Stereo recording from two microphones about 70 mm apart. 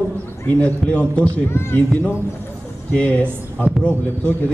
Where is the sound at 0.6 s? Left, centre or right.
Left.